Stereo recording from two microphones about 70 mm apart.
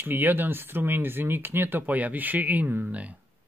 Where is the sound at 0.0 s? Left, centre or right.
Right.